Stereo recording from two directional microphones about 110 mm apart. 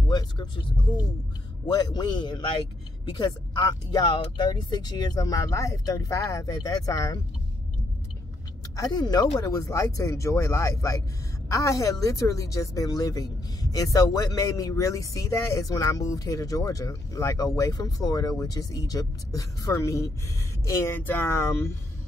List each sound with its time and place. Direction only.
0.1 s speech: 40° left (ahead or behind)
1.7 s a woman's voice: 40° left (ahead or behind)
8.7 s a woman's voice: 35° left (ahead or behind)